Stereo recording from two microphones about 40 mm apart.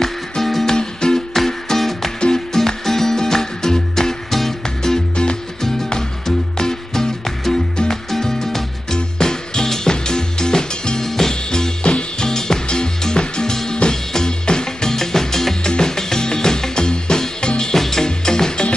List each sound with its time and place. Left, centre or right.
0.0 s music: centre
0.7 s music: centre
1.3 s music: centre
2.1 s music: left
2.5 s music: centre
5.6 s music: centre
11.8 s music: left
12.3 s music: centre